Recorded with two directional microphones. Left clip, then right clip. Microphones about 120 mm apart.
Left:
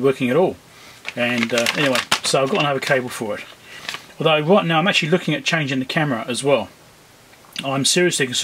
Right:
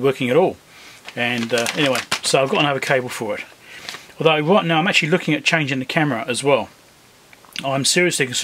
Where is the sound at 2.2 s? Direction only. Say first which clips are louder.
Right 5 dB; 25° right (ahead or behind).